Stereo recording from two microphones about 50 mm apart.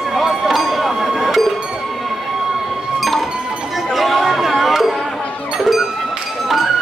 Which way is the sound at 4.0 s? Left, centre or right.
Centre.